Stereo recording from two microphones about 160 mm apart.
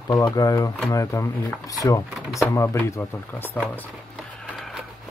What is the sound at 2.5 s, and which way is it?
Speech, 20° left (ahead or behind).